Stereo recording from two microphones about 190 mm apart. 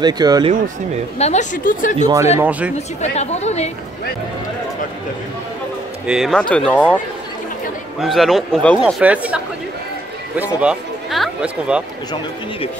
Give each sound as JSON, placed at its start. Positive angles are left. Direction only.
{"t": 0.0, "sound": "speech", "side_deg": -20}
{"t": 1.1, "sound": "a woman's voice", "side_deg": 35}
{"t": 2.3, "sound": "speech", "side_deg": -10}
{"t": 3.0, "sound": "a woman's voice", "side_deg": 35}
{"t": 6.0, "sound": "speech", "side_deg": 0}
{"t": 8.0, "sound": "speech", "side_deg": 0}
{"t": 10.6, "sound": "speech", "side_deg": -5}